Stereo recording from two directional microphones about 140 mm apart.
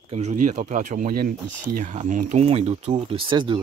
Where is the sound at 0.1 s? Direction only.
55° right (ahead or behind); by 1.3 s 90° right.